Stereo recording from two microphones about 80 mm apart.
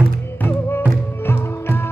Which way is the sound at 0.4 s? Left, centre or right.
Left.